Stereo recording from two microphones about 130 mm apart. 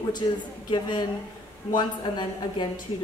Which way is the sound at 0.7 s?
35° left (ahead or behind).